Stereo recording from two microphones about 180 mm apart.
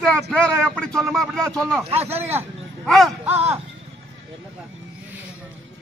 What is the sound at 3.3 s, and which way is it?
Speech, 35° right (ahead or behind).